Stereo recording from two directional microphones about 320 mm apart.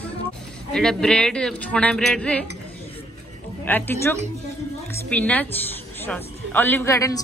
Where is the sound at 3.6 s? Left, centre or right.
Centre.